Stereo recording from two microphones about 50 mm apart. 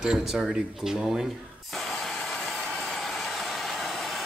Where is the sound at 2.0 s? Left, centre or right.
Centre.